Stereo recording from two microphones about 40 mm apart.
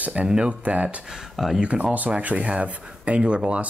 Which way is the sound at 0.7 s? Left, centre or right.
Right.